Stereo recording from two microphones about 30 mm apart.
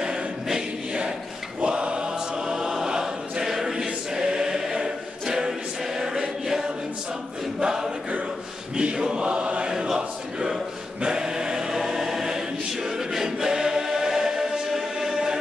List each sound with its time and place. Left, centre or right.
0.5 s choir: right
2.4 s choir: centre
7.6 s choir: centre
9.1 s choir: right
9.7 s choir: right